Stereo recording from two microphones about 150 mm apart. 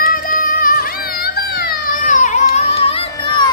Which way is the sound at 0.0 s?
70° left (ahead or behind).